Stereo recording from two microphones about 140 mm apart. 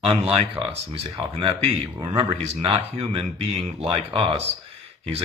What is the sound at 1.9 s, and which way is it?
Speech, 30° right (ahead or behind).